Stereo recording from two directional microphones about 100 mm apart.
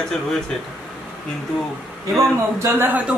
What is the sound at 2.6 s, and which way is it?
Speech, 20° right (ahead or behind).